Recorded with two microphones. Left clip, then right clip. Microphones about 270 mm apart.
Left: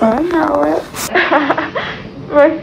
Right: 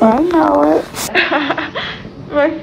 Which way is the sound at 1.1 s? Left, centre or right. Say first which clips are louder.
Left 2 dB; centre.